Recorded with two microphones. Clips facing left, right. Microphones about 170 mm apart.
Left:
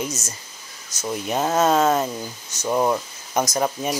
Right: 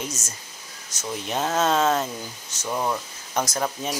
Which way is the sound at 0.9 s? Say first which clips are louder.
Left 4 dB; 10° left (ahead or behind).